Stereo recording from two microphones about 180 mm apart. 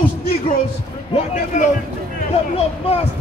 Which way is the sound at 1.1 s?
45° left (ahead or behind).